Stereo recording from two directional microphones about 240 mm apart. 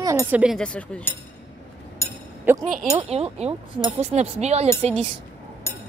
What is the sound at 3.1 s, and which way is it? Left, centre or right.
Speech, right.